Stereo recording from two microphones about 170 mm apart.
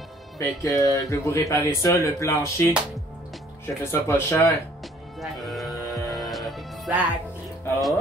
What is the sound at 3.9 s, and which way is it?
Speech, 15° left (ahead or behind).